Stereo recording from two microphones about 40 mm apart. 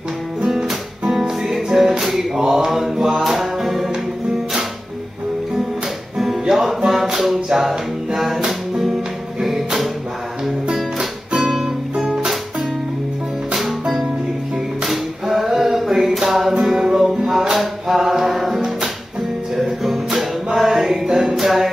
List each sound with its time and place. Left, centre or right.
0.5 s music: centre
2.4 s mantra: centre
3.2 s music: centre
6.1 s music: centre
14.9 s music: centre
19.8 s music: centre
21.4 s music: centre